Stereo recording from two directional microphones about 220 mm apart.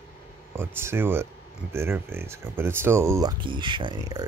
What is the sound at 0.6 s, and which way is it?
Speech, 10° right (ahead or behind).